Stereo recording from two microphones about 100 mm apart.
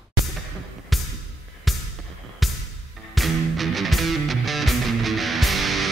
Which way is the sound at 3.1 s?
Centre (ahead or behind).